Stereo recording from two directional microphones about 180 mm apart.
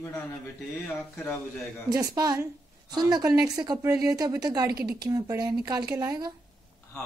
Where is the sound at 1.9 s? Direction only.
20° right (ahead or behind).